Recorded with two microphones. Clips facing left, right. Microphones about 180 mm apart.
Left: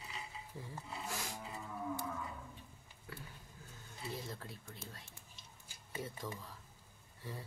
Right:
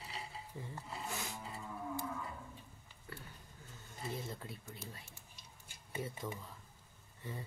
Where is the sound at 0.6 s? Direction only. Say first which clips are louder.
Right 1 dB; centre (ahead or behind).